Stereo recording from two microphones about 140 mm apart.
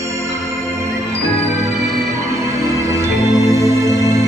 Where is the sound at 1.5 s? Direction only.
20° right (ahead or behind).